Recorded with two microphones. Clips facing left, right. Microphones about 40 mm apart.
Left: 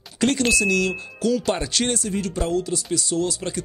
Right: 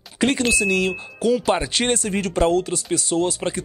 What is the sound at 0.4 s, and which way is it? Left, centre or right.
Speech, centre.